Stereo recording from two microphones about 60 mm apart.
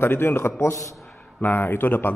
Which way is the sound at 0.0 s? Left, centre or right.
Left.